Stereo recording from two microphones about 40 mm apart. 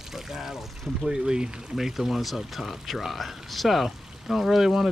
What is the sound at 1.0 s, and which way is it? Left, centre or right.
Speech, centre.